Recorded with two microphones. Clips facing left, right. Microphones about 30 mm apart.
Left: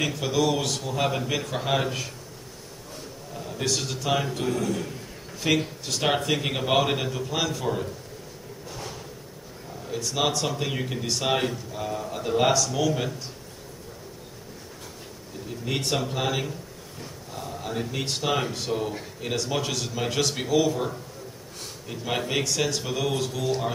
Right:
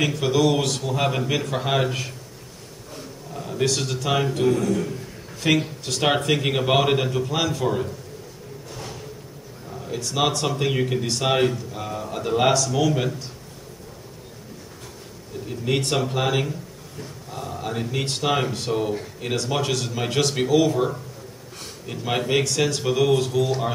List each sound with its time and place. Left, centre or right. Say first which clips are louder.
0.0 s speech: right 4 dB; centre
3.3 s speech: right 5 dB; centre
9.7 s a sound: right 3 dB; right
9.9 s speech: right 2 dB; centre
15.4 s speech: right 5 dB; centre